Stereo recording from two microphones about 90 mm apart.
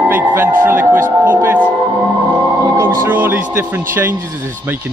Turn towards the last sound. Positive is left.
turn(degrees=-25)  # may be behind; listen again after turning